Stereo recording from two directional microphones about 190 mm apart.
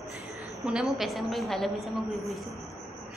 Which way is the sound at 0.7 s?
5° right (ahead or behind).